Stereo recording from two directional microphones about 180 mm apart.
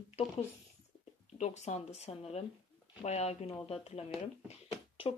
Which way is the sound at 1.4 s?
40° left (ahead or behind).